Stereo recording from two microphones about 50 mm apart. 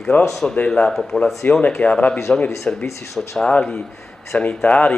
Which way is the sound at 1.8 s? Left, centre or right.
Left.